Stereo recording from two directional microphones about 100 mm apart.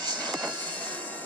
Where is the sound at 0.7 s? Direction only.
15° left (ahead or behind).